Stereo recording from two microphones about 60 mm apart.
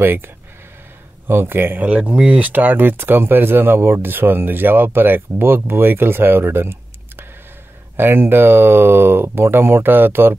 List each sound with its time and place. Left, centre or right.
0.0 s speech: right